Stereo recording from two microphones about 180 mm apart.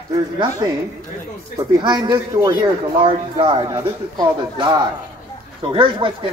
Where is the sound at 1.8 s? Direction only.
25° right (ahead or behind).